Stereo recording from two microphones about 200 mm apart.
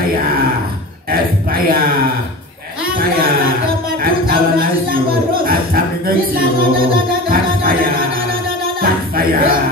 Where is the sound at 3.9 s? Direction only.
50° right (ahead or behind).